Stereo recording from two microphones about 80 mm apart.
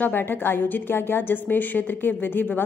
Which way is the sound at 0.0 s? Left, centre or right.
Left.